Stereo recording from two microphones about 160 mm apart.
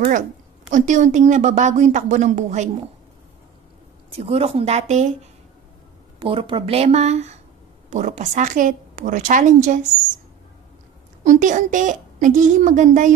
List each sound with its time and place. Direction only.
0.7 s a woman's voice: 50° right (ahead or behind)
4.1 s speech: 40° right (ahead or behind)
6.1 s a woman's voice: 30° right (ahead or behind); by 9.8 s 50° right (ahead or behind)
11.2 s a woman's voice: 50° right (ahead or behind)